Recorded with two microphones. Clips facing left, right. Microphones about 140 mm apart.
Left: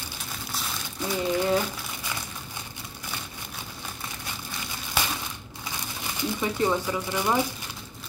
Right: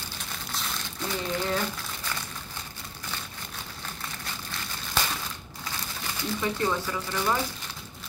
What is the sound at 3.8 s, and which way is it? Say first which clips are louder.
Crumpling: left 1 dB; 15° left (ahead or behind).